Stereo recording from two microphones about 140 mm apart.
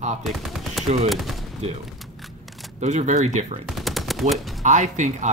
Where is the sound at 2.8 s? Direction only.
55° right (ahead or behind).